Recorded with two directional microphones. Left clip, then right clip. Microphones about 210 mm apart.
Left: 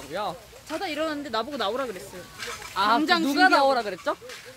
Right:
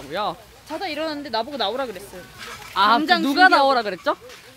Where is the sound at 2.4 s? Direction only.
Centre (ahead or behind).